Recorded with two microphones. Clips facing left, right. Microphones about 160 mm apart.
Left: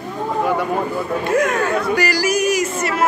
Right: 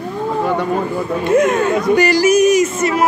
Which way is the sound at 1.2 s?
20° right (ahead or behind).